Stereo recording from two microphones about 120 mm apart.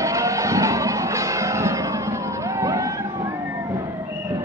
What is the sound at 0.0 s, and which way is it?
Music, 25° right (ahead or behind).